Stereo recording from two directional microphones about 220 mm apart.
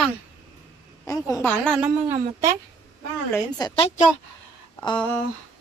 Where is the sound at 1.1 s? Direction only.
15° left (ahead or behind).